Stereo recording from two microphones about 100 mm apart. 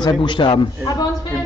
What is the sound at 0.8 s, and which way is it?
Speech, 35° left (ahead or behind).